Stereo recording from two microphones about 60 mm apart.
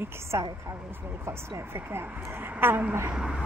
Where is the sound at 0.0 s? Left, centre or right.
Right.